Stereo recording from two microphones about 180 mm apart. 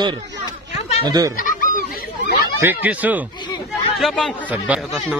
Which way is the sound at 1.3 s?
50° left (ahead or behind).